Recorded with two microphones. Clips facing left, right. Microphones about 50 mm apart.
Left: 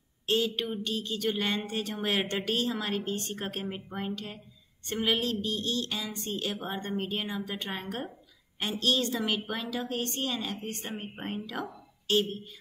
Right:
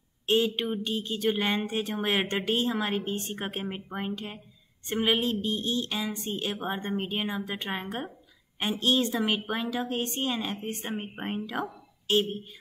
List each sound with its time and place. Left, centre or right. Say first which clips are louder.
0.3 s a woman's voice: right 3 dB; centre